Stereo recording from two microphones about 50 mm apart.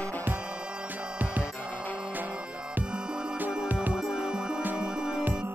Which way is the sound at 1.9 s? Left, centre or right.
Right.